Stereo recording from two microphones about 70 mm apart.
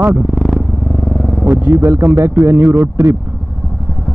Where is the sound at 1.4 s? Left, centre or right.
Right.